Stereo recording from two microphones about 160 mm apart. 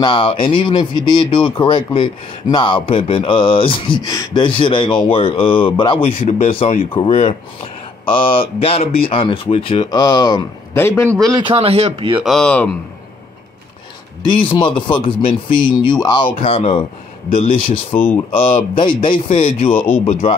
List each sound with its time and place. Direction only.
0.0 s speech: 30° left (ahead or behind)
6.2 s speech: 45° left (ahead or behind)
9.8 s a man's voice: 25° left (ahead or behind)
11.1 s a man's voice: 20° right (ahead or behind)
12.2 s speech: centre (ahead or behind)
14.2 s speech: 30° left (ahead or behind)
17.9 s speech: 10° left (ahead or behind)
18.4 s speech: 35° left (ahead or behind)